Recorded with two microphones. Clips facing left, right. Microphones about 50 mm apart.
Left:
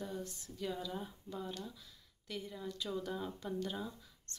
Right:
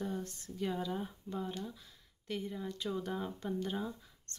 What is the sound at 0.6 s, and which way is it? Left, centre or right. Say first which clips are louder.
Speech: right 4 dB; right.